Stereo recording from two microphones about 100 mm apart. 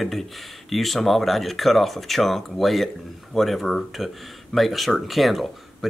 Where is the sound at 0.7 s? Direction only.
Centre (ahead or behind).